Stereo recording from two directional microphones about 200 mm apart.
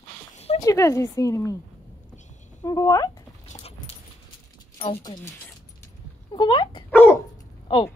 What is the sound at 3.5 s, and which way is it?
Dog, 30° left (ahead or behind).